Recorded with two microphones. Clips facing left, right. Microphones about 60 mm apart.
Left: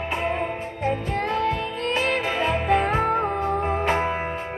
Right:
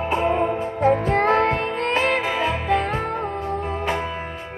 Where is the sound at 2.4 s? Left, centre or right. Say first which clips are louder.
Even; centre.